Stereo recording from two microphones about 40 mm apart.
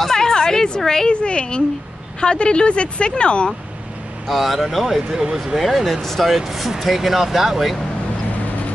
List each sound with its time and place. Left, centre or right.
0.0 s a woman's voice: centre
4.3 s speech: centre